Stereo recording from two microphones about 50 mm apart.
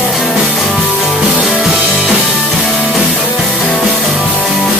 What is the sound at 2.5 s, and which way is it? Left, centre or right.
Music, centre.